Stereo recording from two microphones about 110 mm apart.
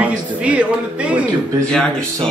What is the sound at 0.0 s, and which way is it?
Speech, 15° right (ahead or behind).